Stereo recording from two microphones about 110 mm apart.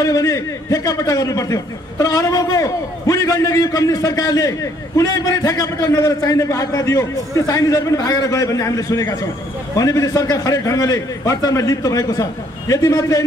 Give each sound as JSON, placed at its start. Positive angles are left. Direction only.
{"t": 0.0, "sound": "a man's voice", "side_deg": 30}